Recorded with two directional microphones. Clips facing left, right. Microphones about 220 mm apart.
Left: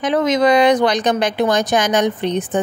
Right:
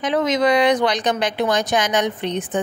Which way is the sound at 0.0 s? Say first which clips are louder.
Left 3 dB; 45° left (ahead or behind).